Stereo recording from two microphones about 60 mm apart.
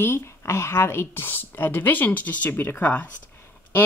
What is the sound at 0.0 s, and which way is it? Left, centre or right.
Speech, left.